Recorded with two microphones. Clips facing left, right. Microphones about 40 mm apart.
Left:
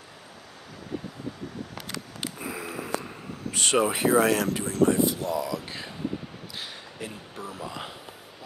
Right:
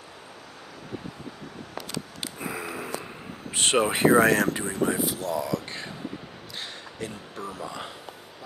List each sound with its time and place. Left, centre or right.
2.3 s sniff: centre
3.5 s a sound: right
3.9 s speech: right
4.8 s speech: centre
7.0 s speech: centre